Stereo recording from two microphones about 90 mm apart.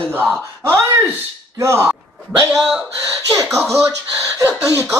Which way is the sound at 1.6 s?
30° right (ahead or behind).